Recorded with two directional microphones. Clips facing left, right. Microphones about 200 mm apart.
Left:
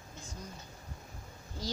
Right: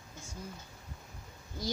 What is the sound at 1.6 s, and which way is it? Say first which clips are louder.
Speech: right 3 dB; 10° right (ahead or behind).